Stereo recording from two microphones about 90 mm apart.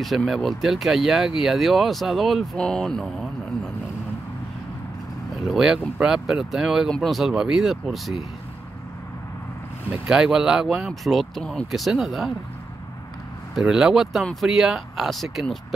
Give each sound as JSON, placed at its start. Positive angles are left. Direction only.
{"t": 0.0, "sound": "speech", "side_deg": 0}
{"t": 5.3, "sound": "speech", "side_deg": -5}
{"t": 10.0, "sound": "speech", "side_deg": -5}
{"t": 13.6, "sound": "speech", "side_deg": -5}